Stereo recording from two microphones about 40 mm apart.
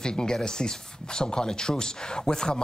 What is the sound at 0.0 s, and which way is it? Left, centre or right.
Speech, centre.